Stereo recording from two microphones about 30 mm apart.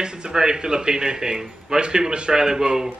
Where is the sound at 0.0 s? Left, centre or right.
Right.